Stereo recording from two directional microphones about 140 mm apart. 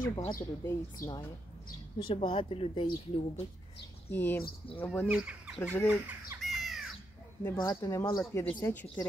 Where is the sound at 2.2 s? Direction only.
40° left (ahead or behind).